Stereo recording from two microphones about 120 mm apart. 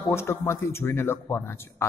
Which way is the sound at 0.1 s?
20° left (ahead or behind).